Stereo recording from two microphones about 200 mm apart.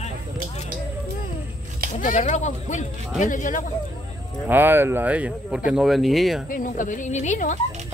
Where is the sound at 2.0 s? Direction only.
40° left (ahead or behind).